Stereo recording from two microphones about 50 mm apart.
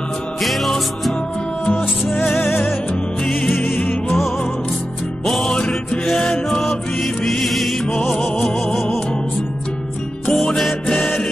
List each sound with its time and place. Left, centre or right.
0.4 s music: centre
3.6 s music: left
5.2 s music: centre
10.3 s music: centre